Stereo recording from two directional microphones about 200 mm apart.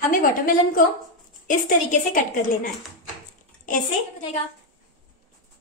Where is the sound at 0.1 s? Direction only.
45° left (ahead or behind).